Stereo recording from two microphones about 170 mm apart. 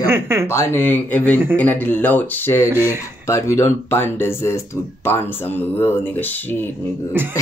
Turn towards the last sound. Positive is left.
turn(degrees=-15)  # may be behind; listen again after turning